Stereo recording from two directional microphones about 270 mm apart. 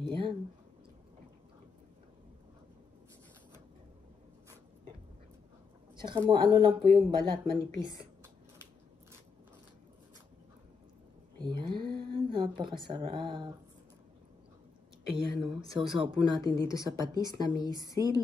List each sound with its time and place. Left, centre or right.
0.0 s a sound: centre
5.9 s speech: centre
11.3 s a sound: centre
12.3 s a woman's voice: centre
15.4 s speech: centre
16.5 s speech: centre
16.9 s speech: centre